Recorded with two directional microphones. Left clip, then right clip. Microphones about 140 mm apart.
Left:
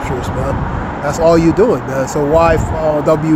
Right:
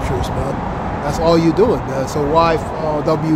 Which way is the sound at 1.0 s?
15° left (ahead or behind).